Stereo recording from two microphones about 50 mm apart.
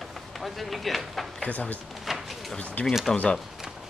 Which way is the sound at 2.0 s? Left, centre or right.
Centre.